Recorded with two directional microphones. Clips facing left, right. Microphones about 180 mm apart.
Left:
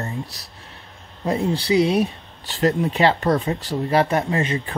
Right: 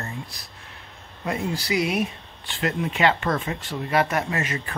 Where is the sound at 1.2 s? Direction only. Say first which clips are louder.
Left 6 dB; 30° left (ahead or behind).